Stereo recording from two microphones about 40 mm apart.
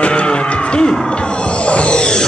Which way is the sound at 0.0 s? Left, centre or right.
Left.